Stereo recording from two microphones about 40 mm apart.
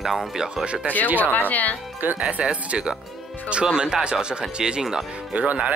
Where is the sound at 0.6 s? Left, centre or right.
Right.